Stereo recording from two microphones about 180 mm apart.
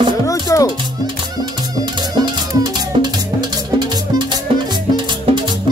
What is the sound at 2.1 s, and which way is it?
Music, 25° right (ahead or behind).